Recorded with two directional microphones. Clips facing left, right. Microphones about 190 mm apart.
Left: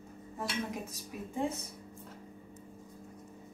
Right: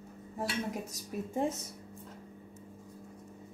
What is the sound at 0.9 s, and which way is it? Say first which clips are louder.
Speech: right 4 dB; 40° right (ahead or behind).